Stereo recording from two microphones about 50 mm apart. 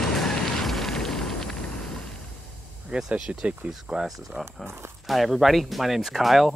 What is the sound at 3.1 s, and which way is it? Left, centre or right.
Speech, right.